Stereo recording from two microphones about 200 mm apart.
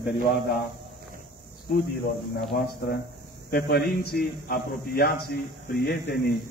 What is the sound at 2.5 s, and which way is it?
A man's voice, 50° left (ahead or behind).